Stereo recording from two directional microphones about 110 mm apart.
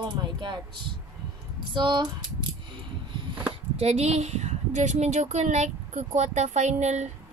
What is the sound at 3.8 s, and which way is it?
A woman's voice, 80° right.